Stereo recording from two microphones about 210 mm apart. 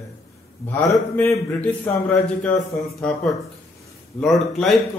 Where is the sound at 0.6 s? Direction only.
10° left (ahead or behind).